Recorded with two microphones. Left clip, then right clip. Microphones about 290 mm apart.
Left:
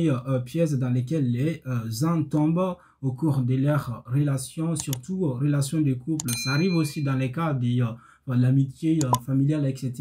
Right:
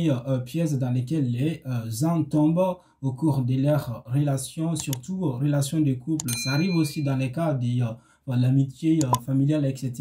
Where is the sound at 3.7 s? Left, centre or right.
Centre.